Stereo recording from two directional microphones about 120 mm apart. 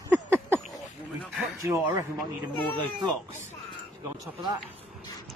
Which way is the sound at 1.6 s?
25° right (ahead or behind).